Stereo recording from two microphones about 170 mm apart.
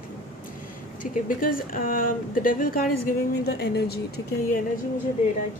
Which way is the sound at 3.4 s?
70° left (ahead or behind).